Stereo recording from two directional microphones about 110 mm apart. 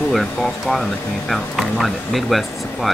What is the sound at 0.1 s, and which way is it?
Speech, centre (ahead or behind).